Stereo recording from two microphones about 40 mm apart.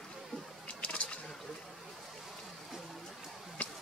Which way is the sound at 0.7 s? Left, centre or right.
Left.